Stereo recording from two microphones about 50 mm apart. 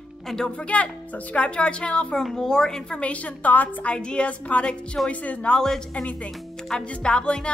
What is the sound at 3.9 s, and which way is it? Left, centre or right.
A woman's voice, centre.